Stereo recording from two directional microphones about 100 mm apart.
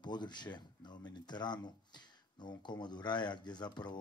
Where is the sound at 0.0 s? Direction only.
45° left (ahead or behind).